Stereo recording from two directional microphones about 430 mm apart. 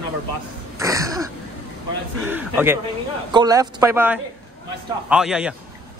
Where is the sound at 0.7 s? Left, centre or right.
Centre.